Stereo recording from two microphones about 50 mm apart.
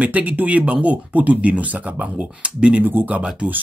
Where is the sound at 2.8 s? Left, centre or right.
Right.